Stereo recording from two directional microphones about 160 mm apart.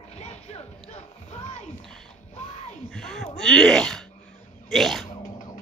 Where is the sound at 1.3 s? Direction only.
45° left (ahead or behind).